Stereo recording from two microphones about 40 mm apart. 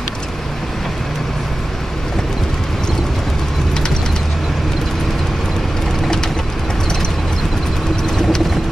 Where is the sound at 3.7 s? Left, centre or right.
Centre.